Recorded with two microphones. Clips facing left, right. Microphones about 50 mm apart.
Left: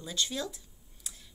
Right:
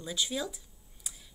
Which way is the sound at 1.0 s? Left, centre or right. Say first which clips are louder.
Even; centre.